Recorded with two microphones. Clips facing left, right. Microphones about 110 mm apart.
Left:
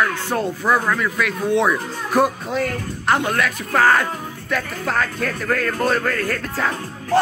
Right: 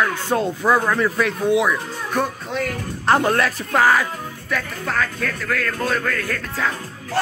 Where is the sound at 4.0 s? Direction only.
Centre (ahead or behind).